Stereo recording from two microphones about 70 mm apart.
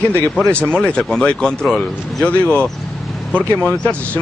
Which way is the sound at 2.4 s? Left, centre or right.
Left.